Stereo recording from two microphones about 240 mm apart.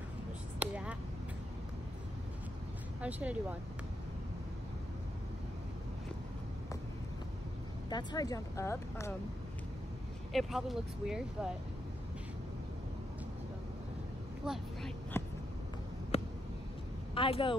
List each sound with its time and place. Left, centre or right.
0.6 s vehicle: centre
3.0 s speech: centre
7.9 s speech: centre
10.3 s speech: centre
14.4 s vehicle: centre
15.2 s a sound: centre
16.1 s a sound: left
17.1 s speech: left